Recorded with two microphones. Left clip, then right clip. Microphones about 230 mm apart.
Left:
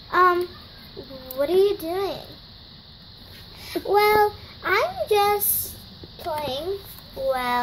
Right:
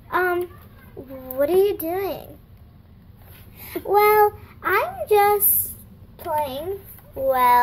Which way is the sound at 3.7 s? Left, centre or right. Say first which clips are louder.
Right 2 dB; centre.